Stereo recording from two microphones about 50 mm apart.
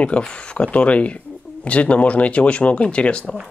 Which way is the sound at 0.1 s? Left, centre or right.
Left.